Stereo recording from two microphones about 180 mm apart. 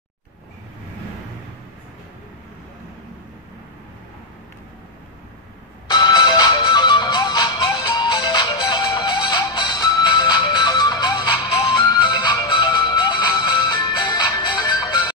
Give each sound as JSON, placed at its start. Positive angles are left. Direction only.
{"t": 5.9, "sound": "music", "side_deg": 20}